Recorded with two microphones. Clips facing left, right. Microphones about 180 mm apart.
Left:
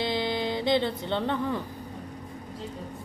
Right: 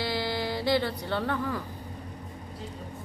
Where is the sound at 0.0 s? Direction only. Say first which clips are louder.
Left 2 dB; 20° left (ahead or behind).